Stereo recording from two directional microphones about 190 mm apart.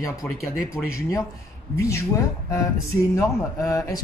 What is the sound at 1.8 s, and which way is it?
Speech, 15° left (ahead or behind).